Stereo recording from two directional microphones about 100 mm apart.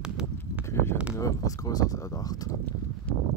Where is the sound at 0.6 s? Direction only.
25° left (ahead or behind).